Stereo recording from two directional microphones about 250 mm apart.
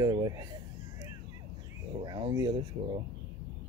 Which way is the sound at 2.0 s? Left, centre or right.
Centre.